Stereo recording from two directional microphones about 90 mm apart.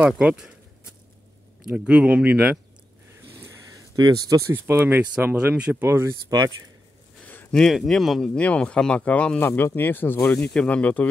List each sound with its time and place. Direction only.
0.2 s speech: 10° right (ahead or behind)
1.9 s speech: 15° right (ahead or behind)
3.3 s a sound: 30° right (ahead or behind)
4.4 s speech: 30° right (ahead or behind)
7.5 s speech: 5° left (ahead or behind)
8.4 s speech: 15° left (ahead or behind)
9.5 s speech: 25° left (ahead or behind)
10.3 s speech: 10° left (ahead or behind)